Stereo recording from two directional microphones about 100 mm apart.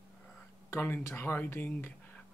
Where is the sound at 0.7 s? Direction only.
25° left (ahead or behind).